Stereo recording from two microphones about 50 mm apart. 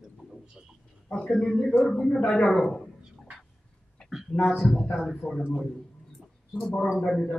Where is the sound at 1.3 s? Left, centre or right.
Centre.